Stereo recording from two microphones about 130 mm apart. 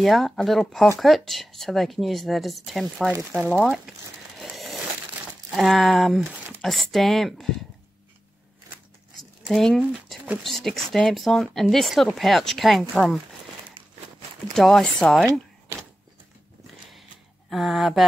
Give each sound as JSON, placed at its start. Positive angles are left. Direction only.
{"t": 0.0, "sound": "speech", "side_deg": 0}
{"t": 4.4, "sound": "a sound", "side_deg": 0}
{"t": 5.6, "sound": "speech", "side_deg": 0}
{"t": 9.5, "sound": "speech", "side_deg": 0}
{"t": 13.8, "sound": "a sound", "side_deg": -40}
{"t": 14.5, "sound": "speech", "side_deg": 5}
{"t": 17.5, "sound": "speech", "side_deg": 0}